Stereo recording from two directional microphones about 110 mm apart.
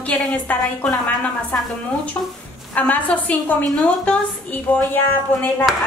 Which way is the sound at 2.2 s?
25° left (ahead or behind).